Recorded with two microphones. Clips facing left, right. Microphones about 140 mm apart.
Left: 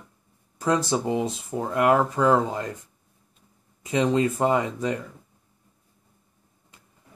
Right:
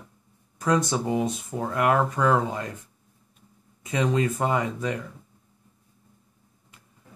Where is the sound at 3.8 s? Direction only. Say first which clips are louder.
Left 3 dB; 25° left (ahead or behind).